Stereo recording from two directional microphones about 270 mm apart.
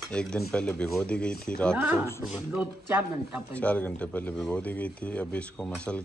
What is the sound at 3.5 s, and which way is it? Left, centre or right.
Speech, centre.